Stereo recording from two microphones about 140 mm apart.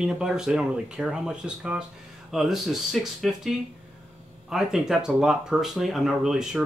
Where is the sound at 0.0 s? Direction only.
5° right (ahead or behind).